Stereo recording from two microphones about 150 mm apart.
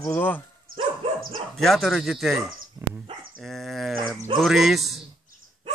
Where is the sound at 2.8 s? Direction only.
20° right (ahead or behind).